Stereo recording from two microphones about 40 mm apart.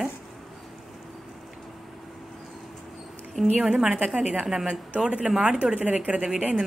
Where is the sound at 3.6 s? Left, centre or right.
Centre.